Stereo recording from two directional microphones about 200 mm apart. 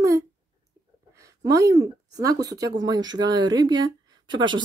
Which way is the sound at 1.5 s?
15° right (ahead or behind).